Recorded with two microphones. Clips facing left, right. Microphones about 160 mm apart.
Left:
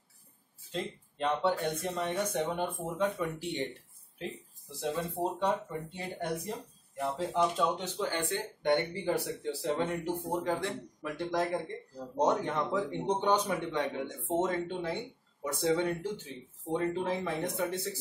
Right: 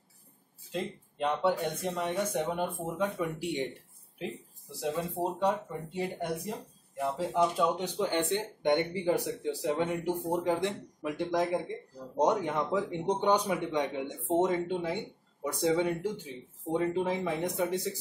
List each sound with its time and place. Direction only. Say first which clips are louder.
0.7 s speech: right 2 dB; 10° right (ahead or behind)
4.7 s speech: right 1 dB; 5° right (ahead or behind)